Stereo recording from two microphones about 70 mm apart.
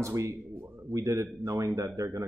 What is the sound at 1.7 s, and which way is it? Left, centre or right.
Speech, right.